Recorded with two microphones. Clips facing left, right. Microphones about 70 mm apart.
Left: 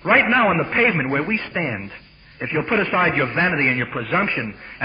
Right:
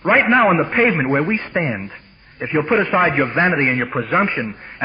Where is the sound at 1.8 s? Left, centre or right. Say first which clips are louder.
Right 2 dB; right.